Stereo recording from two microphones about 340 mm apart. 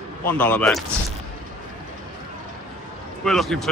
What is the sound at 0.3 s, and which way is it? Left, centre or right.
Speech, centre.